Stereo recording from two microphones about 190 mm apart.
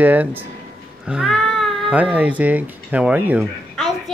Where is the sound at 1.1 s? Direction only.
Centre (ahead or behind).